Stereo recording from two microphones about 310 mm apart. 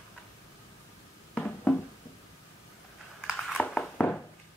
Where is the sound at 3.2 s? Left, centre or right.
Centre.